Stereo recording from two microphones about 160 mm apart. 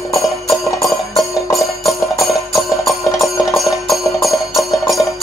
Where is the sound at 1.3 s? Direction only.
Centre (ahead or behind).